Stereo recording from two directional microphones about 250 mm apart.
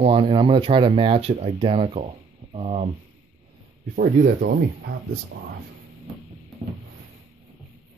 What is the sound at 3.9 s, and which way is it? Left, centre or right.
Speech, right.